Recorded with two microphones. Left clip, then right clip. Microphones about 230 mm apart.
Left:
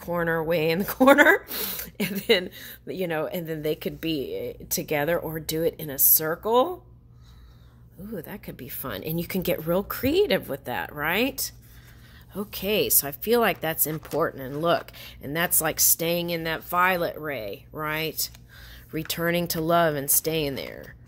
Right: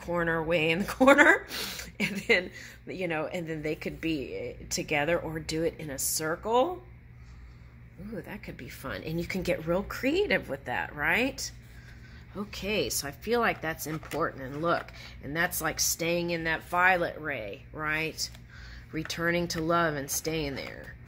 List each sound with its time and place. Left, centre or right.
0.0 s speech: left
8.1 s speech: left